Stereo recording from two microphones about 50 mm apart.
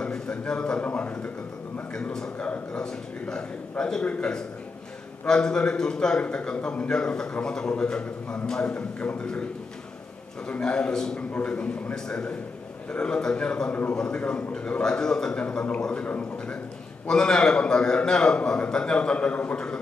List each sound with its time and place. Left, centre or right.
0.0 s a sound: centre
0.5 s a man's voice: centre
2.1 s a man's voice: centre
2.4 s a man's voice: left
2.8 s a man's voice: centre
10.5 s a man's voice: centre
15.4 s a man's voice: left
17.1 s a man's voice: centre